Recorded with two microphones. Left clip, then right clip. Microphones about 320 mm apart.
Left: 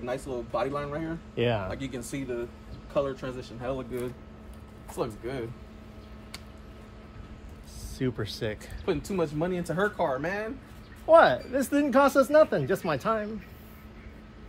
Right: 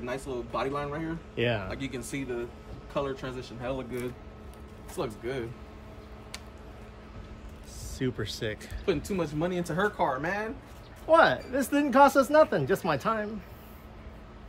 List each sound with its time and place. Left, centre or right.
0.0 s speech: centre
1.3 s speech: centre
1.7 s a man's voice: centre
8.0 s speech: centre